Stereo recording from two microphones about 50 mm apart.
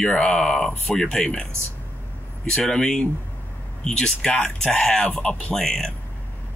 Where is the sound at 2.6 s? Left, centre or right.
Centre.